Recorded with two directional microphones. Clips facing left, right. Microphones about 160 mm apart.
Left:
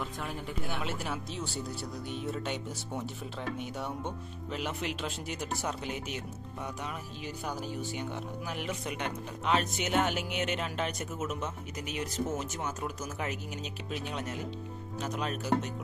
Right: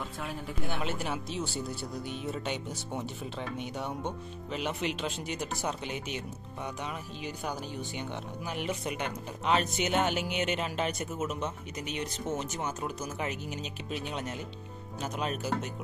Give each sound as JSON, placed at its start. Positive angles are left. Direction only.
{"t": 0.7, "sound": "speech", "side_deg": 0}
{"t": 7.2, "sound": "speech", "side_deg": 0}